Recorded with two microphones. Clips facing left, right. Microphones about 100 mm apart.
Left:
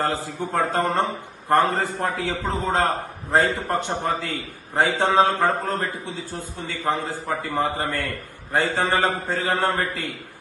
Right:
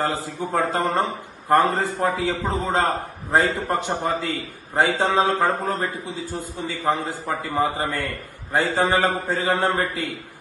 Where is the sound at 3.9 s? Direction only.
Centre (ahead or behind).